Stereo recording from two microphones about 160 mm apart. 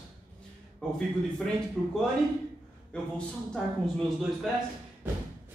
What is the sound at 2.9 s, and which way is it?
A man's voice, 5° left (ahead or behind).